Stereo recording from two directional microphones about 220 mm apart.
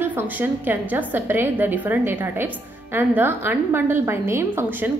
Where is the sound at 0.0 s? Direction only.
10° right (ahead or behind).